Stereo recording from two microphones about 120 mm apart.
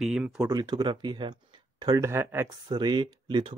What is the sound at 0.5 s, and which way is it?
Speech, 35° right (ahead or behind).